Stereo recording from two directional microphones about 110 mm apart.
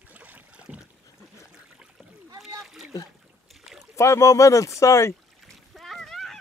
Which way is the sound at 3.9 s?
25° left (ahead or behind).